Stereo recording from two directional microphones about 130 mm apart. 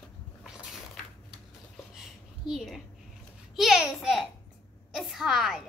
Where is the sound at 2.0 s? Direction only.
5° right (ahead or behind).